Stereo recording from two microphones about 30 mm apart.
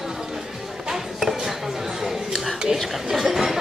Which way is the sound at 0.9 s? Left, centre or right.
Centre.